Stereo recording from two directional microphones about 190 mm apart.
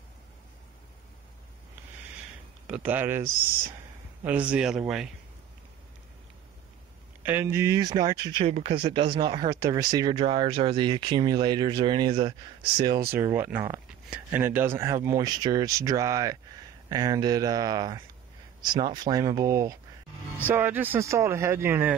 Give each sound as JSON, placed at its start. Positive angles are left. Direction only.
{"t": 2.6, "sound": "speech", "side_deg": -5}
{"t": 7.2, "sound": "speech", "side_deg": -10}
{"t": 13.2, "sound": "speech", "side_deg": -10}